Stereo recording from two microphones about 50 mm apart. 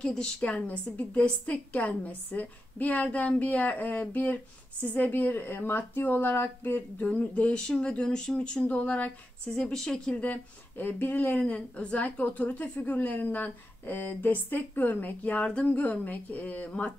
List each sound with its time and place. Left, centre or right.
0.0 s a woman's voice: centre
7.5 s speech: centre
8.6 s speech: left
9.5 s speech: centre
10.1 s speech: left
10.8 s a woman's voice: left